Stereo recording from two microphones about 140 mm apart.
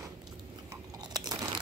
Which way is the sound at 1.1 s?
30° right (ahead or behind).